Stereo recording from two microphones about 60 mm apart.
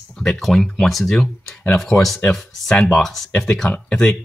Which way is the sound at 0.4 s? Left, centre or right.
Centre.